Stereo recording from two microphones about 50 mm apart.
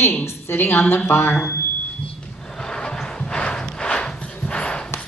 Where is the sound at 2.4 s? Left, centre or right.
Centre.